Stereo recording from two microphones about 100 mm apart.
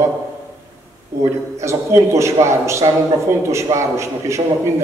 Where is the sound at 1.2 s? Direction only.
30° right (ahead or behind).